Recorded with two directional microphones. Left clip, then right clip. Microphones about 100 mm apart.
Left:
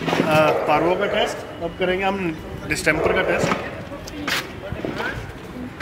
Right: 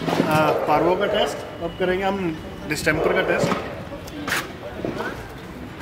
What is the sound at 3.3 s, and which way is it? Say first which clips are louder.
Speech: left 1 dB; 40° left (ahead or behind).